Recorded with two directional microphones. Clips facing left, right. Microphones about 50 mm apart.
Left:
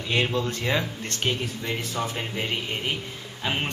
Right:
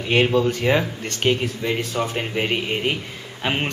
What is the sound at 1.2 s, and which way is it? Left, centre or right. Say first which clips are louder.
Speech: right 7 dB; right.